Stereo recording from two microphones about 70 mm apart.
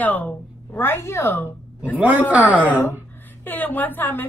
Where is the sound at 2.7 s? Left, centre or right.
Left.